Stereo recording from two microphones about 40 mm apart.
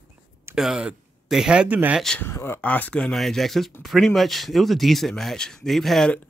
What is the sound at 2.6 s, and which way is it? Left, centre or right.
Speech, left.